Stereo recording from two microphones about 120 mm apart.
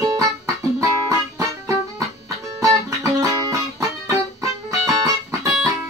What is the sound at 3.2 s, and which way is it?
Music, 25° right (ahead or behind).